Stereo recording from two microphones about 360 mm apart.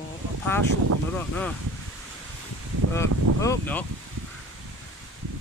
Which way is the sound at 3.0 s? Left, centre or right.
Centre.